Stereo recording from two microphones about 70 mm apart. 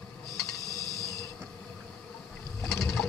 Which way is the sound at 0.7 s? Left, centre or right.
Right.